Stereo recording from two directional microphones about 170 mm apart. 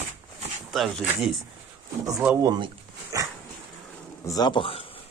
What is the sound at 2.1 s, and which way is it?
Speech, 15° right (ahead or behind).